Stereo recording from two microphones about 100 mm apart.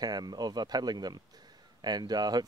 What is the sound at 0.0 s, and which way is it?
Speech, 45° right (ahead or behind).